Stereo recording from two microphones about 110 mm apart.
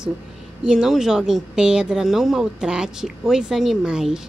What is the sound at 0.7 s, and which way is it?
Speech, 5° right (ahead or behind).